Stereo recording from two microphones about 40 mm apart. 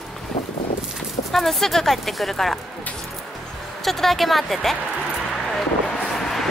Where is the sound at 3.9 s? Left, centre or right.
Centre.